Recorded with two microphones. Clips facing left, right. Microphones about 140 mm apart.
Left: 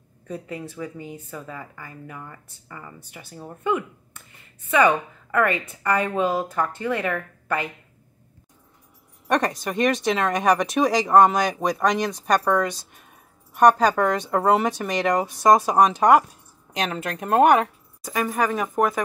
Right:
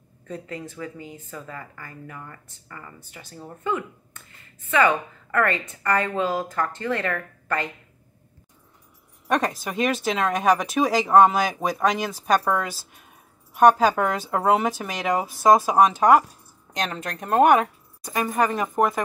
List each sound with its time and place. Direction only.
0.3 s speech: 10° left (ahead or behind)
9.3 s speech: centre (ahead or behind)